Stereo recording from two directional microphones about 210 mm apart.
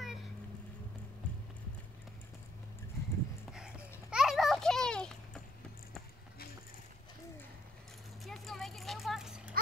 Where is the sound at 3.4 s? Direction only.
5° right (ahead or behind).